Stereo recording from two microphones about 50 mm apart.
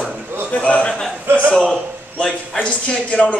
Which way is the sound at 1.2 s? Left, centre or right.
Right.